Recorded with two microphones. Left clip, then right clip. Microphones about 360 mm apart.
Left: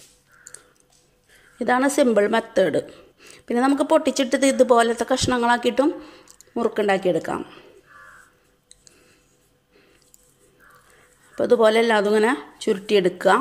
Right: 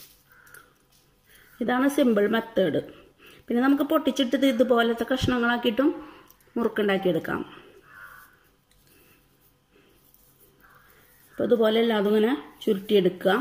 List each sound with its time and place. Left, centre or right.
1.6 s a woman's voice: centre
11.3 s speech: left
12.3 s a woman's voice: centre
12.8 s speech: left